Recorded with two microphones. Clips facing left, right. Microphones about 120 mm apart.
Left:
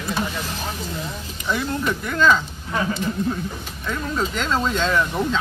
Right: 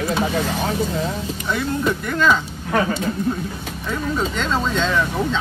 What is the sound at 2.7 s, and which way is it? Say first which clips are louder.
Speech: right 5 dB; 60° right (ahead or behind).